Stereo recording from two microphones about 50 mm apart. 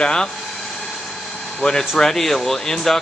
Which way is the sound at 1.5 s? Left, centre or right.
Centre.